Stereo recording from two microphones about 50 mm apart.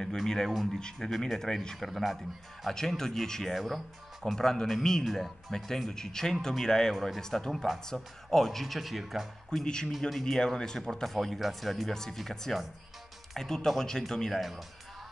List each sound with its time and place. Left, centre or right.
0.0 s speech: centre
1.9 s speech: centre
2.7 s speech: centre
3.5 s speech: centre
4.4 s speech: centre
9.6 s speech: centre
9.8 s speech: centre